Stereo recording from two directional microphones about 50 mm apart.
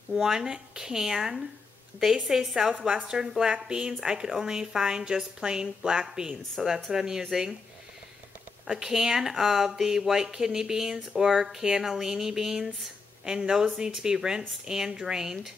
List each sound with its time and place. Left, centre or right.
0.1 s speech: centre
8.6 s speech: centre